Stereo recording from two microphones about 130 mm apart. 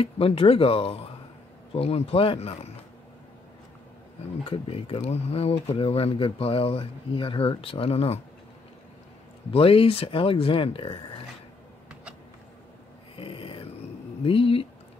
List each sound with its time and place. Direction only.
0.0 s speech: 45° left (ahead or behind)
4.5 s speech: 45° left (ahead or behind)
9.5 s speech: 45° left (ahead or behind)
11.9 s vehicle: 10° right (ahead or behind)
13.2 s a sound: 45° left (ahead or behind)
14.2 s speech: 45° left (ahead or behind)